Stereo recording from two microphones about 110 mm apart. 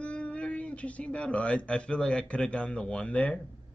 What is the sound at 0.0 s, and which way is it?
Speech, 10° left (ahead or behind).